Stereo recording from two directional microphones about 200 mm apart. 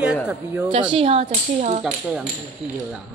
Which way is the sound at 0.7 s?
25° right (ahead or behind).